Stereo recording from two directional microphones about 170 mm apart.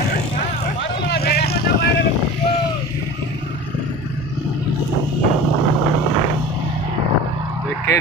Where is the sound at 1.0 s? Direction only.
70° left (ahead or behind).